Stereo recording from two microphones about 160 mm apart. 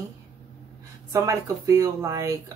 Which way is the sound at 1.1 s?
20° right (ahead or behind).